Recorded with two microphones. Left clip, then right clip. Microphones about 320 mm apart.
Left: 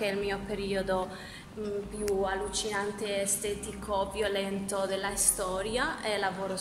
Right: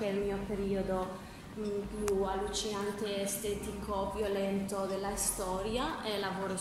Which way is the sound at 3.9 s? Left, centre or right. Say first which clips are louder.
Left 4 dB; left.